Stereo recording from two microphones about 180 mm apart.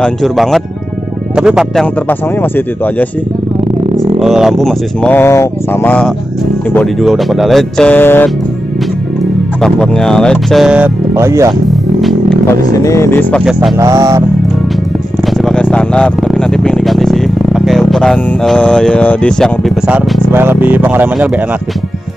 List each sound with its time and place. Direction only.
0.0 s speech: centre (ahead or behind)
2.0 s speech: 10° left (ahead or behind)
4.2 s speech: centre (ahead or behind)
9.6 s speech: 5° left (ahead or behind)
11.1 s a sound: 15° right (ahead or behind)
12.0 s speech: centre (ahead or behind)
12.8 s speech: 15° left (ahead or behind)
13.5 s speech: 5° right (ahead or behind)
13.7 s a sound: 20° right (ahead or behind)
15.2 s speech: centre (ahead or behind)